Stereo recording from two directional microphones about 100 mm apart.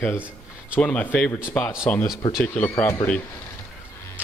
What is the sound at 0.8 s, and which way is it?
Speech, 15° left (ahead or behind).